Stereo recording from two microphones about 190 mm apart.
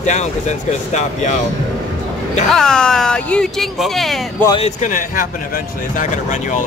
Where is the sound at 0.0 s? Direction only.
40° left (ahead or behind).